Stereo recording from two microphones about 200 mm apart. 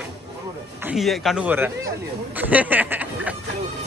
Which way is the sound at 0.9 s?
Centre (ahead or behind).